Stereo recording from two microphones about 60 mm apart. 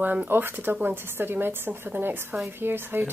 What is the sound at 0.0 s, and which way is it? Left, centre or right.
Speech, right.